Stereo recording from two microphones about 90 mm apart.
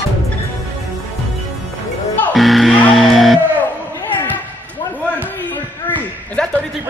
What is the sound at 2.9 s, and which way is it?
Speech, centre (ahead or behind).